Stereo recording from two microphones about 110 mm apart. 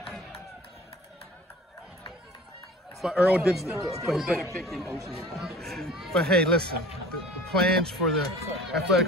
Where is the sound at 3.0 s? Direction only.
5° right (ahead or behind).